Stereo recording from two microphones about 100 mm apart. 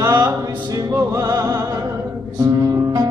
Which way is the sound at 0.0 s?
45° right (ahead or behind).